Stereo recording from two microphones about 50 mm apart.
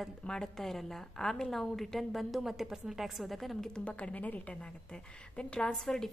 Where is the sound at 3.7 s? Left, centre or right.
Left.